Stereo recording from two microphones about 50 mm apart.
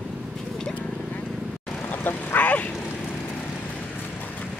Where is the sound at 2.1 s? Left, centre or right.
Left.